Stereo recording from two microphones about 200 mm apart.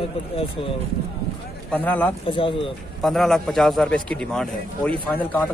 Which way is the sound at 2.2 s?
25° left (ahead or behind).